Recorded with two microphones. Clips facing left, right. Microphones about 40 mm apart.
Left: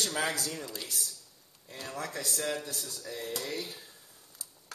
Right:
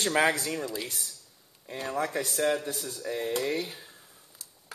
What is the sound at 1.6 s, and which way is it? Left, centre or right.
Speech, right.